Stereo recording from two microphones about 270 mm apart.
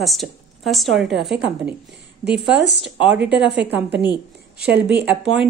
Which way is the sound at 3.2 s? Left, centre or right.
Centre.